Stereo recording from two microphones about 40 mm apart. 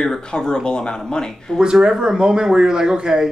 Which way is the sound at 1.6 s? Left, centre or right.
Centre.